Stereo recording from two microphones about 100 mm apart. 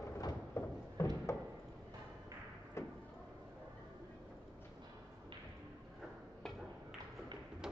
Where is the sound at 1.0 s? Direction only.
25° left (ahead or behind).